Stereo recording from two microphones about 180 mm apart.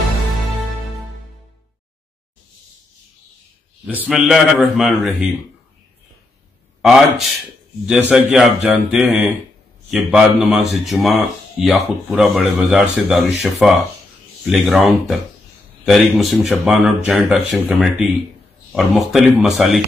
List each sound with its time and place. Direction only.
3.8 s a man's voice: 10° right (ahead or behind)
6.8 s a man's voice: centre (ahead or behind)